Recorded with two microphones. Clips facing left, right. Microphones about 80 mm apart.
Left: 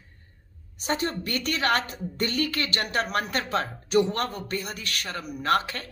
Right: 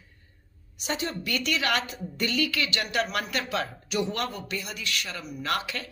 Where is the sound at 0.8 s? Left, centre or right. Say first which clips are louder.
Left 3 dB; left.